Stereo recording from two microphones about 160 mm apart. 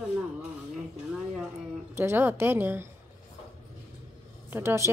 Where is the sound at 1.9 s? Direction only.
15° right (ahead or behind).